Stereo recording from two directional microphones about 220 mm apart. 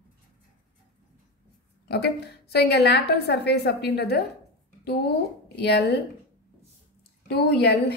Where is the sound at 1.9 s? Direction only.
50° left (ahead or behind).